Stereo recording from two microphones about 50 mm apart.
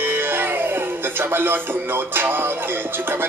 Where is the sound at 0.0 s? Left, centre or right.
Right.